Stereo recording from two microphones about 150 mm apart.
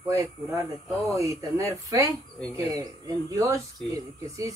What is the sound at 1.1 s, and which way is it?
Speech, 20° right (ahead or behind).